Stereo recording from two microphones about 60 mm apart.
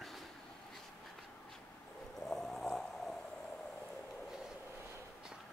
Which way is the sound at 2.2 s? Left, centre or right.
Centre.